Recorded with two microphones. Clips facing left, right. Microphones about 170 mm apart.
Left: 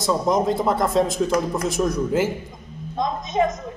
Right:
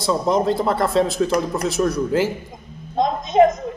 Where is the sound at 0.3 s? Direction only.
Centre (ahead or behind).